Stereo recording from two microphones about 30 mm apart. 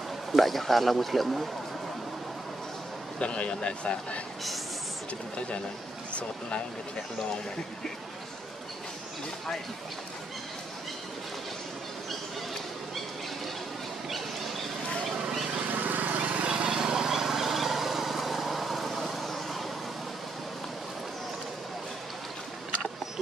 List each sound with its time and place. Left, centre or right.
0.3 s a man's voice: centre
3.2 s speech: left
14.0 s a sound: centre
15.7 s lawn mower: right
16.2 s lawn mower: right
16.4 s lawn mower: right
16.7 s vehicle: right; by 19.7 s centre